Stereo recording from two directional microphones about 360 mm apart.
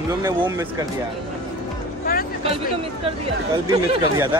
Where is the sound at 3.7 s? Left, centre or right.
Centre.